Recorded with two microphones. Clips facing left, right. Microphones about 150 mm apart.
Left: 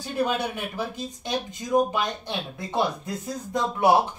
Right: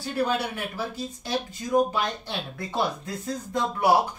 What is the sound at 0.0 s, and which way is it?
Speech, 15° left (ahead or behind).